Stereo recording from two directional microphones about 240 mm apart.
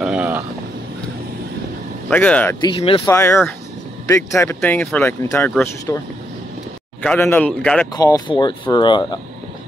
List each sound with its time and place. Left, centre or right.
0.0 s vehicle: centre
2.0 s speech: centre
2.6 s speech: left
3.1 s speech: centre
7.9 s speech: centre